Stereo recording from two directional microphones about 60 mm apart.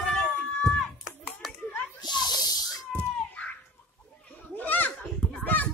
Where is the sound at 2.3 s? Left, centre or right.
Left.